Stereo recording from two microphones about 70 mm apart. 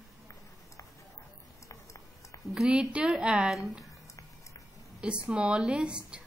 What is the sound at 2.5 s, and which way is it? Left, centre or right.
Speech, centre.